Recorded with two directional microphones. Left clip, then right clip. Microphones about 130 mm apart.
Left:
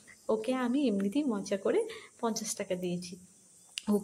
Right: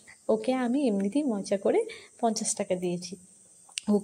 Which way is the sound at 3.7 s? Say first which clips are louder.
Right 4 dB; 20° right (ahead or behind).